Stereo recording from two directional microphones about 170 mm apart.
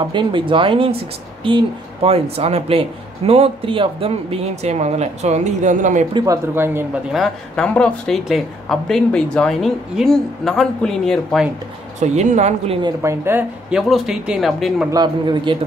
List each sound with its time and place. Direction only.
0.0 s speech: 30° right (ahead or behind); by 6.0 s 45° right (ahead or behind)
6.1 s speech: 20° right (ahead or behind)
7.1 s speech: centre (ahead or behind)
12.0 s speech: 45° right (ahead or behind)
12.8 s speech: 15° right (ahead or behind)
14.9 s speech: 25° right (ahead or behind)